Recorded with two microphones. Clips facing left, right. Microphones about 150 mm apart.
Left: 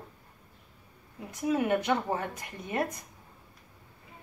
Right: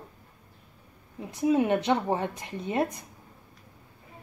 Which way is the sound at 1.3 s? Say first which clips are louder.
Right 4 dB; 20° right (ahead or behind).